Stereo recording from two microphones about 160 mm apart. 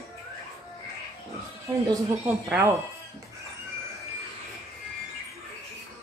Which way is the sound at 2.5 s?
15° right (ahead or behind).